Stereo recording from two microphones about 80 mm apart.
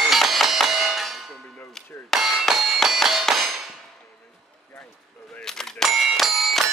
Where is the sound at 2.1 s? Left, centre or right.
Centre.